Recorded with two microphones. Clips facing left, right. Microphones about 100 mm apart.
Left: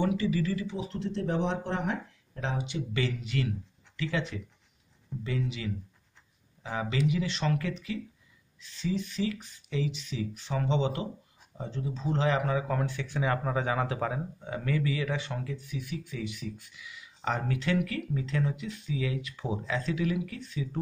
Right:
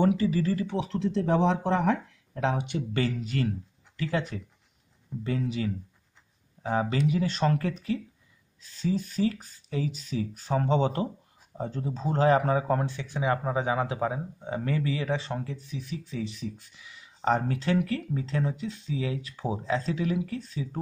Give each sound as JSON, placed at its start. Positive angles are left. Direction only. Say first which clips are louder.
{"t": 0.0, "sound": "speech", "louder": "right 4 dB", "side_deg": -40}
{"t": 0.7, "sound": "speech", "louder": "right 5 dB", "side_deg": -85}
{"t": 2.3, "sound": "speech", "louder": "right 5 dB", "side_deg": -60}
{"t": 12.8, "sound": "speech", "louder": "right 2 dB", "side_deg": -20}